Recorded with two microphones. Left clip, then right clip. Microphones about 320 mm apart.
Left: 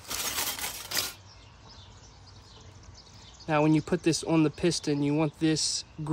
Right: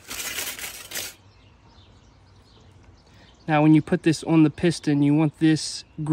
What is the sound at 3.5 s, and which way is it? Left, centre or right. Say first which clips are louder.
Speech: right 6 dB; right.